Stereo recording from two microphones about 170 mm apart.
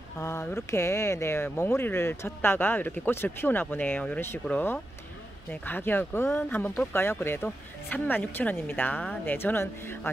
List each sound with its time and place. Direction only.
0.2 s speech: 15° left (ahead or behind)